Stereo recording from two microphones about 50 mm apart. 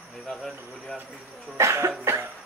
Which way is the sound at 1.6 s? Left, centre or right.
Right.